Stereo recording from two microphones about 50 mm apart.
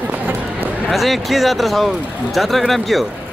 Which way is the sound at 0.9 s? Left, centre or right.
Centre.